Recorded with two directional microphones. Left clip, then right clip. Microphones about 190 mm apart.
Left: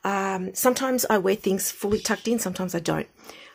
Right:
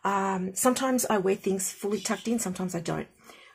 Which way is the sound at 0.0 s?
30° left (ahead or behind).